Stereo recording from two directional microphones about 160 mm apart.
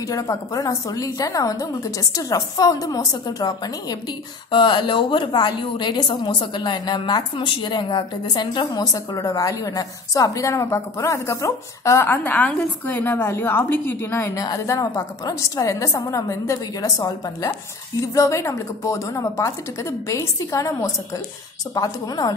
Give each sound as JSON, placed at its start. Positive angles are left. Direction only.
{"t": 0.1, "sound": "a woman's voice", "side_deg": 20}